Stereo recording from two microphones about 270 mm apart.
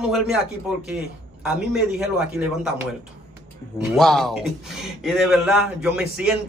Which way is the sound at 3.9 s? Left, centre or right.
Centre.